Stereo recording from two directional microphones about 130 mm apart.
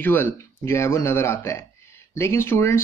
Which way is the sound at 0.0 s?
15° left (ahead or behind).